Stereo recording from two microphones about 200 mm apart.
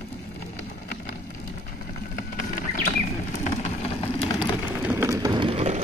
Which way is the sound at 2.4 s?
45° left (ahead or behind).